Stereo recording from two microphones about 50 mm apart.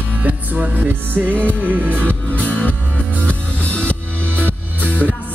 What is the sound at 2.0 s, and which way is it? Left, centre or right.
Music, left.